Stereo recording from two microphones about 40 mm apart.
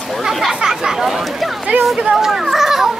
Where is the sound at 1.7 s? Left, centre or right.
Right.